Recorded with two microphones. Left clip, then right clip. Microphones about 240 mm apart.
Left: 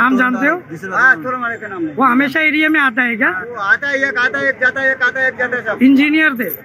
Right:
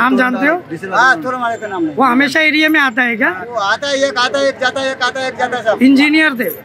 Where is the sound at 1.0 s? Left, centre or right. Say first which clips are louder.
Even; centre.